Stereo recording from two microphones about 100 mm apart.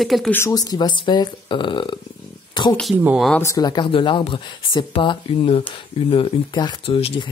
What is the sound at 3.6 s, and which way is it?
Speech, 50° left (ahead or behind).